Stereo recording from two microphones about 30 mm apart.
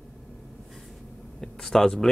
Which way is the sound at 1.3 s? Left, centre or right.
Centre.